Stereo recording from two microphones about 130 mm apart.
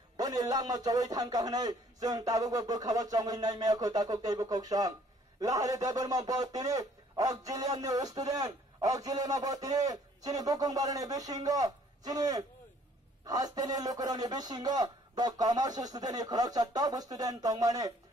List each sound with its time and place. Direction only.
0.2 s a man's voice: 30° right (ahead or behind)